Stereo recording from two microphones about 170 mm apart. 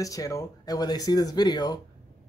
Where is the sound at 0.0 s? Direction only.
20° left (ahead or behind).